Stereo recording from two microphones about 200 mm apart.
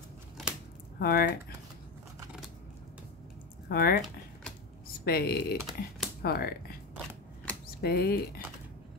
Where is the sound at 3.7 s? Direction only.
50° left (ahead or behind).